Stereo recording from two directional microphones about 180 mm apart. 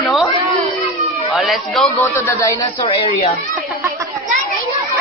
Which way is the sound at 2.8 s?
30° left (ahead or behind).